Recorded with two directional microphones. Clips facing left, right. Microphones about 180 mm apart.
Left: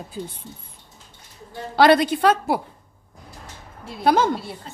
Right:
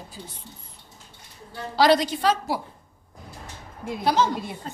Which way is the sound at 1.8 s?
60° left (ahead or behind).